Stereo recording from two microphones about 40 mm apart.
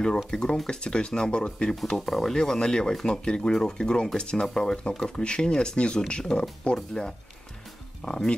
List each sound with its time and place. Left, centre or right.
0.3 s speech: centre
2.0 s speech: centre
2.3 s speech: centre
4.6 s speech: centre